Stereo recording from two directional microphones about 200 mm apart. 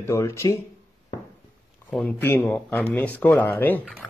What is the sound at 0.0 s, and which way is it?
Speech, 15° left (ahead or behind).